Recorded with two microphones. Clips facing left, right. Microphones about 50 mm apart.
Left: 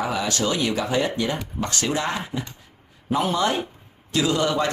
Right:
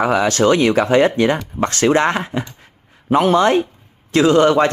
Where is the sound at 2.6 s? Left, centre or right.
Right.